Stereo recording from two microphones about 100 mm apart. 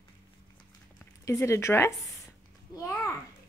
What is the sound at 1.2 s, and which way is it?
Speech, 30° left (ahead or behind).